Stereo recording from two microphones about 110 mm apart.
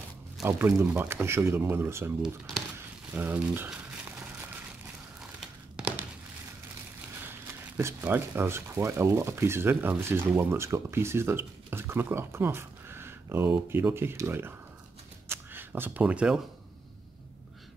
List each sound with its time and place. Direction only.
0.5 s speech: 20° right (ahead or behind)
2.2 s speech: centre (ahead or behind)
3.2 s speech: 15° right (ahead or behind)
5.4 s a sound: 10° right (ahead or behind)
7.2 s speech: 20° right (ahead or behind)
15.2 s a sound: 20° right (ahead or behind)